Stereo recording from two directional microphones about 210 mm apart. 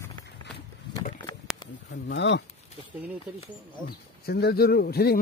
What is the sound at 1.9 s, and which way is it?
Speech, 55° left (ahead or behind).